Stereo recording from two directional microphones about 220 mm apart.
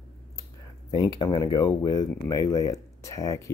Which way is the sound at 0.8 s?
20° left (ahead or behind).